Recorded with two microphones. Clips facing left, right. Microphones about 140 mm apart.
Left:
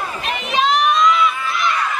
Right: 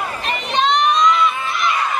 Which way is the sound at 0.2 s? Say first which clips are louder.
Even; 5° left (ahead or behind).